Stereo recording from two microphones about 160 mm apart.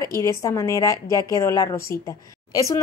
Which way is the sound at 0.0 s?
20° left (ahead or behind).